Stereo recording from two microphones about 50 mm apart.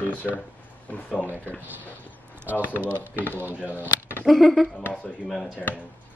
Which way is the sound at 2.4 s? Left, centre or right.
Right.